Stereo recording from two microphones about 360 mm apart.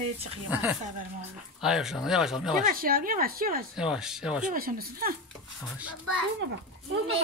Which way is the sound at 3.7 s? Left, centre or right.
Centre.